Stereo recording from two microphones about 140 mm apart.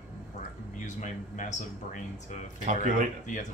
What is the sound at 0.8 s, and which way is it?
Speech, 60° left (ahead or behind).